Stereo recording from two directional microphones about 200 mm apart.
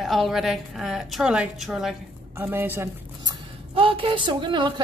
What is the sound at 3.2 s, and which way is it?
A woman's voice, 25° right (ahead or behind).